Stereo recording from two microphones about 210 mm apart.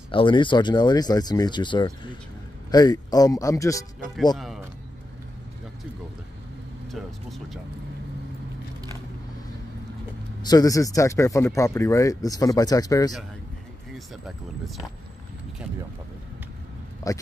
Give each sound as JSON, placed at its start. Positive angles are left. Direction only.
{"t": 0.1, "sound": "speech", "side_deg": 25}
{"t": 4.4, "sound": "speech", "side_deg": 0}
{"t": 6.9, "sound": "speech", "side_deg": 0}
{"t": 10.4, "sound": "speech", "side_deg": 15}
{"t": 17.0, "sound": "speech", "side_deg": 15}